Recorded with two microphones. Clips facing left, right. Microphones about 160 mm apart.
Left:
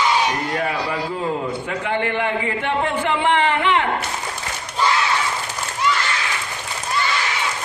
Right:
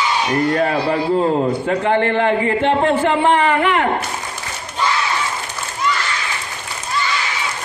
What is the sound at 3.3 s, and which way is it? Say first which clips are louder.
Speech: right 3 dB; 20° left (ahead or behind).